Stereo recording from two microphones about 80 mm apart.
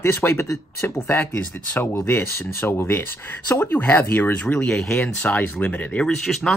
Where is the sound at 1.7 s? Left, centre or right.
Centre.